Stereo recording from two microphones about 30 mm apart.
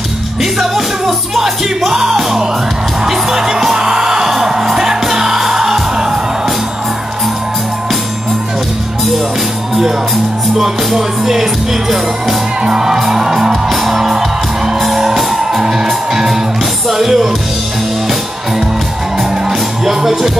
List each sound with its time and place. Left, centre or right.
0.4 s music: centre
10.6 s music: centre
12.6 s music: centre
13.5 s music: centre
19.8 s music: centre